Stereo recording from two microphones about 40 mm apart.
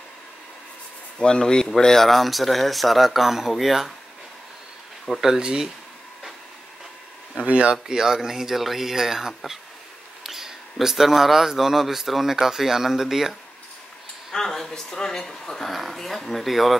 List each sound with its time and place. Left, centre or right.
1.1 s speech: left; by 3.9 s centre
5.2 s speech: centre
7.4 s speech: right
7.7 s speech: centre
14.3 s speech: centre